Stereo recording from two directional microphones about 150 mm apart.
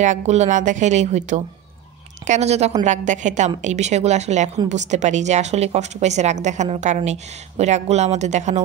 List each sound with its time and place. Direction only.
0.0 s a woman's voice: 50° right (ahead or behind)